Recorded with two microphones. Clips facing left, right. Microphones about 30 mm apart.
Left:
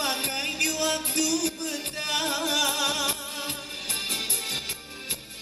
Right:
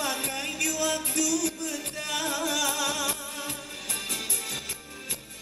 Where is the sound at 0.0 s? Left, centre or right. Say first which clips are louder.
Left 2 dB; left.